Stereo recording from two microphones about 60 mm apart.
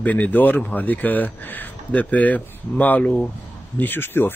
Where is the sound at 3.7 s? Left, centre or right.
Left.